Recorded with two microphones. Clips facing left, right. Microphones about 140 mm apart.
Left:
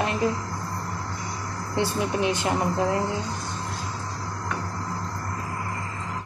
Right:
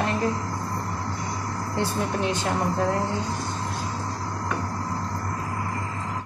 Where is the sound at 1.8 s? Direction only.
10° left (ahead or behind).